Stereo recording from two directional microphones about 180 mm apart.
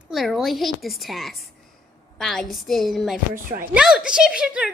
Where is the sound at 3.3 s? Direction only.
50° right (ahead or behind).